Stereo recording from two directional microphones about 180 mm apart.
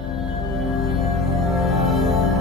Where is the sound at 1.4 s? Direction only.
Centre (ahead or behind).